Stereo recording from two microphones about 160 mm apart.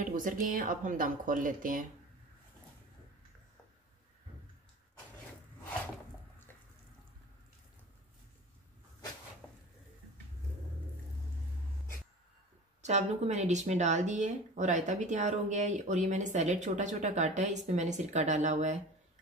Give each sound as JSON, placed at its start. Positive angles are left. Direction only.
{"t": 0.0, "sound": "a woman's voice", "side_deg": -55}
{"t": 12.8, "sound": "speech", "side_deg": -45}